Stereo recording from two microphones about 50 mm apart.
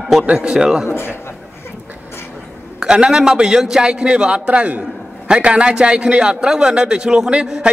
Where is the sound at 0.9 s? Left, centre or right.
Left.